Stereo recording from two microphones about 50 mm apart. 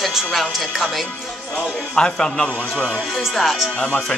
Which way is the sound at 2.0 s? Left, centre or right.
Centre.